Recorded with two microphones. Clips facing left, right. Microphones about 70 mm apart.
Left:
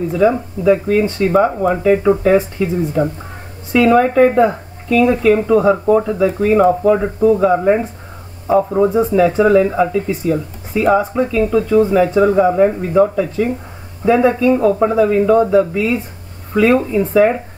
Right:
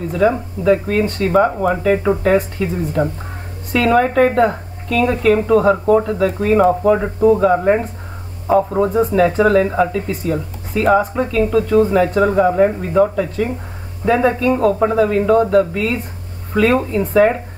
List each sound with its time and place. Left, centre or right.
0.1 s speech: centre
3.7 s speech: centre
8.5 s speech: centre